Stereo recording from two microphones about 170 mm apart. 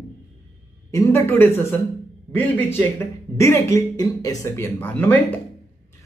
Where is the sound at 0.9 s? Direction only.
15° left (ahead or behind).